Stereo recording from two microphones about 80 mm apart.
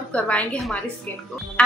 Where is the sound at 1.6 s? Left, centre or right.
Centre.